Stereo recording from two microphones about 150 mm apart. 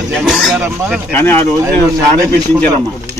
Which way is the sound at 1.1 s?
15° left (ahead or behind).